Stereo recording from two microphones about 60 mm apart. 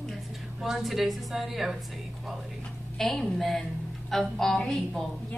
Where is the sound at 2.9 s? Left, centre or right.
Centre.